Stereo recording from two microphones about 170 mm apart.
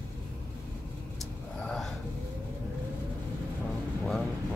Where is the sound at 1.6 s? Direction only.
5° left (ahead or behind).